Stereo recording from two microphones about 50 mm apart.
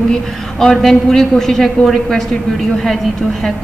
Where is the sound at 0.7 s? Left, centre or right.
Centre.